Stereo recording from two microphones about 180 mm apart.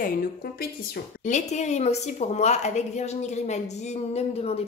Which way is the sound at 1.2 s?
40° left (ahead or behind).